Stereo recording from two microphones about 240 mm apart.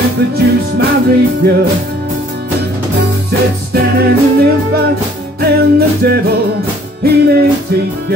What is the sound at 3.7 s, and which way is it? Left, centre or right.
Music, right.